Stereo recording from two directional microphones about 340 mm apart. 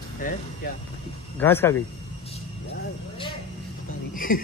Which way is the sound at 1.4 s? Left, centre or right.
Centre.